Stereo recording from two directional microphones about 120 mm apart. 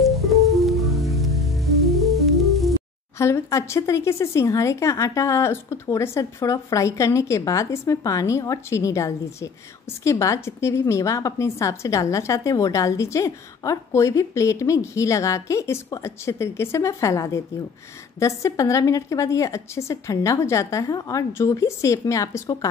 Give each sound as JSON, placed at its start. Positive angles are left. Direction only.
{"t": 0.0, "sound": "music", "side_deg": 0}
{"t": 3.2, "sound": "a woman's voice", "side_deg": 20}